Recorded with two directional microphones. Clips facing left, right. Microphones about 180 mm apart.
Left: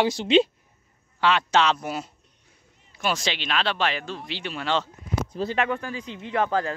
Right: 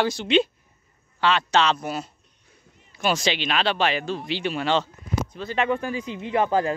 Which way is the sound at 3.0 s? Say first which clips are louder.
Right 4 dB; centre (ahead or behind).